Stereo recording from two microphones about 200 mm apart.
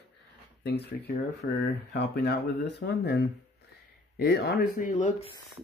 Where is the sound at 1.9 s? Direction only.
55° left (ahead or behind); by 5.3 s 35° left (ahead or behind).